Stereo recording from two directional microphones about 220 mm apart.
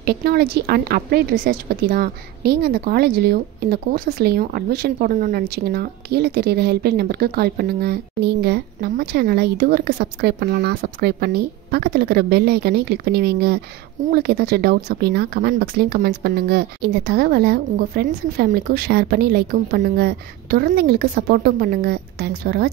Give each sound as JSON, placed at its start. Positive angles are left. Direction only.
{"t": 0.0, "sound": "a woman's voice", "side_deg": -45}